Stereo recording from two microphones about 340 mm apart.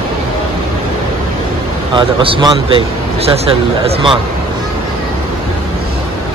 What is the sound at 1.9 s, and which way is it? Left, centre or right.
A man's voice, centre.